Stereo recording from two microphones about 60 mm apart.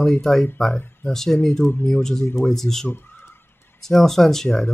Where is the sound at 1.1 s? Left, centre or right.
Centre.